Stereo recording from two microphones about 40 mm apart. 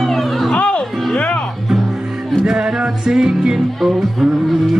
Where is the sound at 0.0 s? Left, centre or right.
Centre.